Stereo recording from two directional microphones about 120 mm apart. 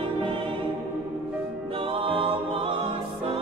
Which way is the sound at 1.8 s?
50° right (ahead or behind).